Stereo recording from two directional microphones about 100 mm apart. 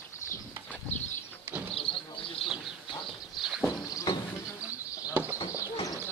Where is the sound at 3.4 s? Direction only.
5° right (ahead or behind).